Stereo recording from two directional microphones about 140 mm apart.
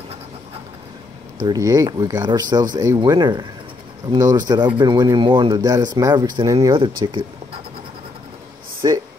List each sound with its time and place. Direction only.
1.4 s speech: 25° right (ahead or behind)
8.8 s speech: 30° right (ahead or behind)